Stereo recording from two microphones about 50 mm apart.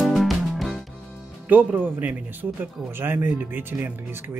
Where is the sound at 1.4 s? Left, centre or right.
Right.